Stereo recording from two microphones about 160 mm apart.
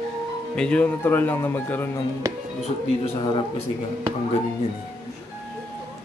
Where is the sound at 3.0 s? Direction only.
30° left (ahead or behind).